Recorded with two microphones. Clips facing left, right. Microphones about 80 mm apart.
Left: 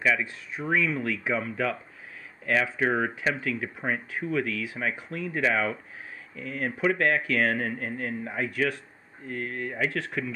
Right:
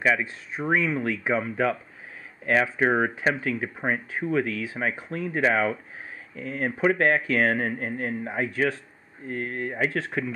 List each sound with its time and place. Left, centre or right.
0.0 s speech: right